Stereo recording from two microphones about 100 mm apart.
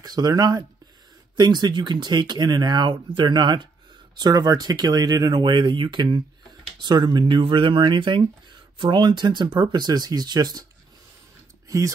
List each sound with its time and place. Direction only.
0.0 s speech: 45° right (ahead or behind)